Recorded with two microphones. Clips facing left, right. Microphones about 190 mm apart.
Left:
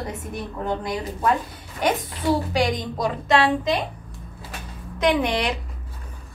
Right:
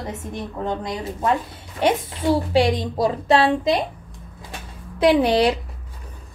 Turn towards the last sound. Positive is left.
turn(degrees=-35)  # may be behind; listen again after turning